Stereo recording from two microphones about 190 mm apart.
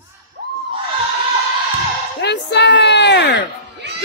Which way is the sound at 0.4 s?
55° right (ahead or behind).